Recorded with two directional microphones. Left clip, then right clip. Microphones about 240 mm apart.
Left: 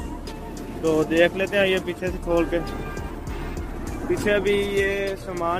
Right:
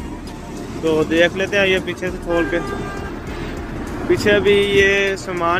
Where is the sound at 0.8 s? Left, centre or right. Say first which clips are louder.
Right 4 dB; centre.